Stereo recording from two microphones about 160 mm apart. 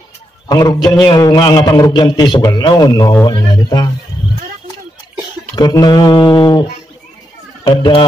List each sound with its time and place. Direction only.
0.5 s a man's voice: 25° left (ahead or behind)
5.6 s a man's voice: 25° left (ahead or behind)
7.6 s a man's voice: 30° left (ahead or behind)